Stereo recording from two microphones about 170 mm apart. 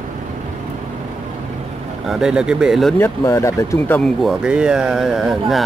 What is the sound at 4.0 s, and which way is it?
Speech, centre (ahead or behind).